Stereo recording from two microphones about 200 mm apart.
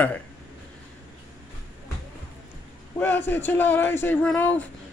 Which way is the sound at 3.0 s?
10° left (ahead or behind).